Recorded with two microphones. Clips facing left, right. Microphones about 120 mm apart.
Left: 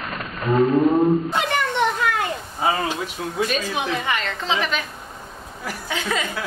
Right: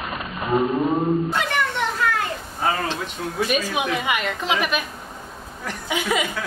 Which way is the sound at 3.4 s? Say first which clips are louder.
Right 1 dB; 10° right (ahead or behind).